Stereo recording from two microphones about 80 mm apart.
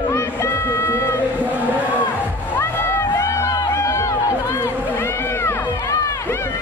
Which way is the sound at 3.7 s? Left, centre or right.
Left.